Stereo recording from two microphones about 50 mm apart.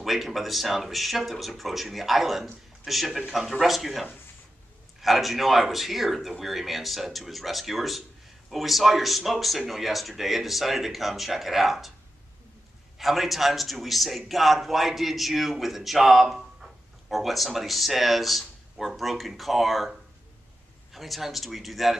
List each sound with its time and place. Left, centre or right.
0.0 s a man's voice: centre
12.9 s a man's voice: centre